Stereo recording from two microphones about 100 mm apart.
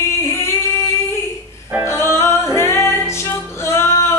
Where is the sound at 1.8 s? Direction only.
25° left (ahead or behind).